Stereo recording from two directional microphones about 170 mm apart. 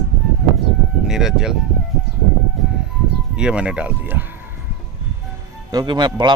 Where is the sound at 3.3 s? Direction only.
5° right (ahead or behind).